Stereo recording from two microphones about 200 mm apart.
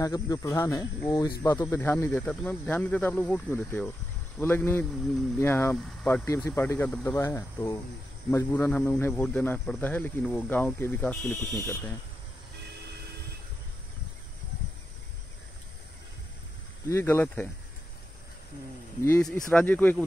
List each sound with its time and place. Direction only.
0.0 s speech: 15° left (ahead or behind)
16.9 s speech: 10° left (ahead or behind)
18.9 s speech: 15° left (ahead or behind)